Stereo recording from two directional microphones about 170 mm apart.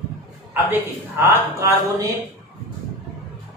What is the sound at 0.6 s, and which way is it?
A man's voice, 15° right (ahead or behind).